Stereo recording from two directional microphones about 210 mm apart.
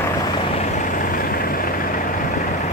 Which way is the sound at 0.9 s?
45° left (ahead or behind).